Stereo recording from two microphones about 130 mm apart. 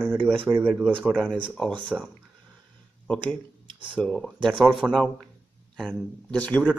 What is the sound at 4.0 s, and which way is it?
Speech, centre (ahead or behind).